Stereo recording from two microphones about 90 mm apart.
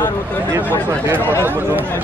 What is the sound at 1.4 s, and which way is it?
Speech, 25° right (ahead or behind).